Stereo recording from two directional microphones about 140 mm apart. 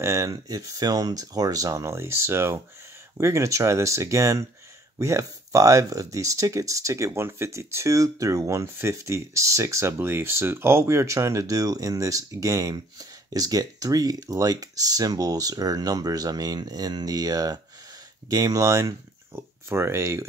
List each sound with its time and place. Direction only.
0.0 s speech: 20° right (ahead or behind)